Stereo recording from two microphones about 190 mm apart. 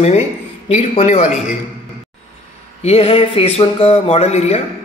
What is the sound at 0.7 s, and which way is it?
Speech, 35° left (ahead or behind).